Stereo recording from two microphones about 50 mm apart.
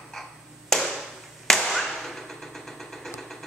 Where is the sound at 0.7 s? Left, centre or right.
Centre.